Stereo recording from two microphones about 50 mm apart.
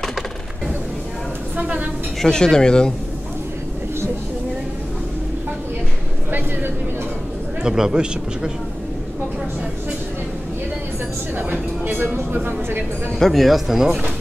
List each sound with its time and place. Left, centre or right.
2.2 s speech: centre
7.6 s speech: centre
11.3 s speech: right
13.2 s speech: centre